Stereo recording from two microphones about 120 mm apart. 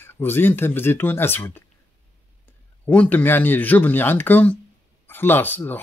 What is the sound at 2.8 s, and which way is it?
Speech, 15° left (ahead or behind).